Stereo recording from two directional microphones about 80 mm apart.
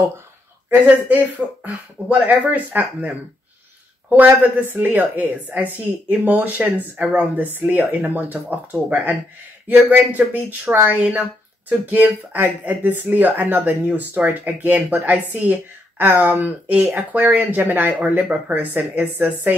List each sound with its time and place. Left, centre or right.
0.8 s speech: centre
4.1 s speech: centre